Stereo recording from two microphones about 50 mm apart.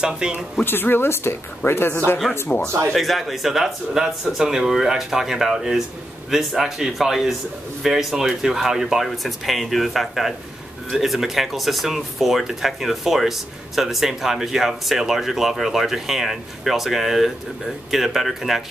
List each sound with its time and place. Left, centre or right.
0.0 s speech: centre
0.6 s a woman's voice: left
3.0 s speech: centre